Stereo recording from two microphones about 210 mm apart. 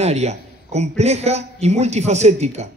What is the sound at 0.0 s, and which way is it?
A man's voice, 30° right (ahead or behind).